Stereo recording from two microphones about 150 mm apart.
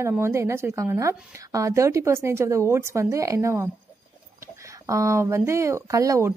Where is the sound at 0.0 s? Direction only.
20° right (ahead or behind).